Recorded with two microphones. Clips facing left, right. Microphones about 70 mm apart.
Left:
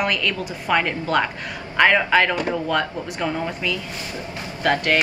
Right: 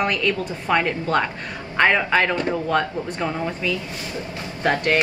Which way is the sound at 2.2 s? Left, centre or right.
Right.